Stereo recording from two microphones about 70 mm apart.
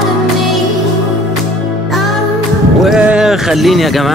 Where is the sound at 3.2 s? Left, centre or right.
Centre.